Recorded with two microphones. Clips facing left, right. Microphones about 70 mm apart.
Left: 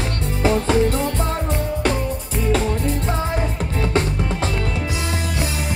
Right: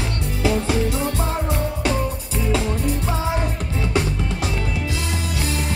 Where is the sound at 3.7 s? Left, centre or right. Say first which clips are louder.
Left 2 dB; left.